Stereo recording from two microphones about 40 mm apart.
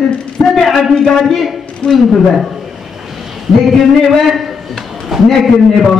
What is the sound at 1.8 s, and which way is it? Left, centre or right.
Speech, left.